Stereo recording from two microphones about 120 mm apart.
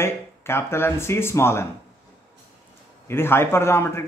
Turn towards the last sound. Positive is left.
turn(degrees=20)  # may be behind; listen again after turning